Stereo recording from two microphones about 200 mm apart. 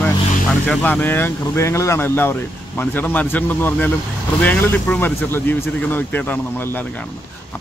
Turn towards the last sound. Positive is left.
turn(degrees=10)  # may be behind; listen again after turning